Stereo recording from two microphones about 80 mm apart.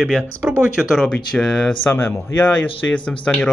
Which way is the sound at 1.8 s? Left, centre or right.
Left.